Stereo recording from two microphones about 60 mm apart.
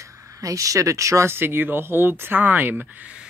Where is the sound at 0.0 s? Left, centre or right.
Right.